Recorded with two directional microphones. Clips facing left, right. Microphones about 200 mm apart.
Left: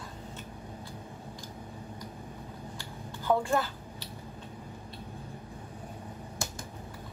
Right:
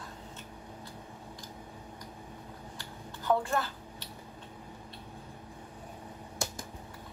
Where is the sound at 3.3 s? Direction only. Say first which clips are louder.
Left 1 dB; 5° left (ahead or behind).